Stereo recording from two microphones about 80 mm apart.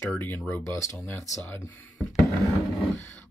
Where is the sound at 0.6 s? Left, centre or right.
Left.